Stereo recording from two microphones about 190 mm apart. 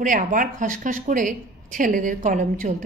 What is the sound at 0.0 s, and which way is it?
A woman's voice, 45° right (ahead or behind).